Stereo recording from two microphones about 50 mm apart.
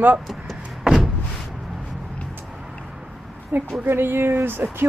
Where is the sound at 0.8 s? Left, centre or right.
Centre.